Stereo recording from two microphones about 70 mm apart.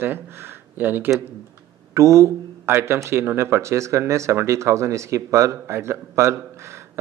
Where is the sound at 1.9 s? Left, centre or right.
Right.